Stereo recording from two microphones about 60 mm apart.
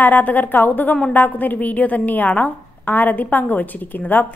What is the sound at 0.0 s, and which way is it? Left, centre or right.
A woman's voice, left.